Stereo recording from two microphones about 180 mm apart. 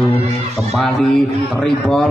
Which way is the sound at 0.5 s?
Centre (ahead or behind).